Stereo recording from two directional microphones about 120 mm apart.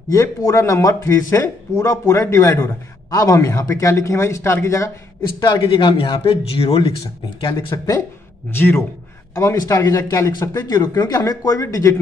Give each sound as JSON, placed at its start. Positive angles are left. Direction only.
{"t": 0.1, "sound": "a man's voice", "side_deg": 30}
{"t": 5.4, "sound": "speech", "side_deg": 40}
{"t": 7.4, "sound": "speech", "side_deg": 35}
{"t": 8.5, "sound": "a man's voice", "side_deg": 15}